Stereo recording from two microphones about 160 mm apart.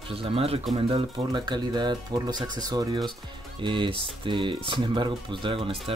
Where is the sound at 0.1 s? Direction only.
35° right (ahead or behind).